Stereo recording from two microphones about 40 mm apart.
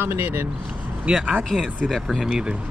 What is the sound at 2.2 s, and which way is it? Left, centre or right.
Speech, centre.